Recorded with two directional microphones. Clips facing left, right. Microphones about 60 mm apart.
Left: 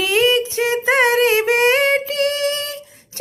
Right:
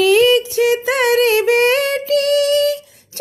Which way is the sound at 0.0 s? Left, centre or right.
Left.